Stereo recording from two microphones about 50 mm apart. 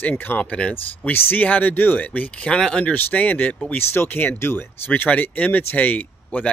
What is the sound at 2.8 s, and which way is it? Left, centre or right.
Speech, left.